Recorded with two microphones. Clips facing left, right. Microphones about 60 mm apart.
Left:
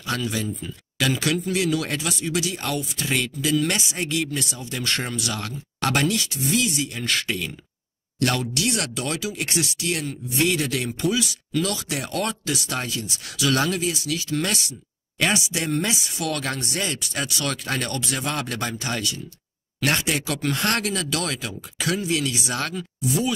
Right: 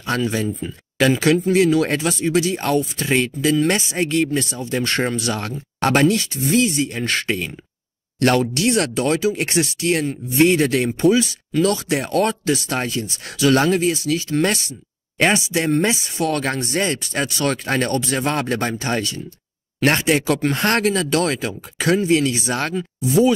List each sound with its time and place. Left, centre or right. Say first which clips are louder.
0.0 s speech: right 5 dB; right